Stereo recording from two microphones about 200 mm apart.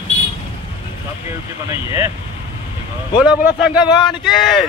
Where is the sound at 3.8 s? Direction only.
20° left (ahead or behind).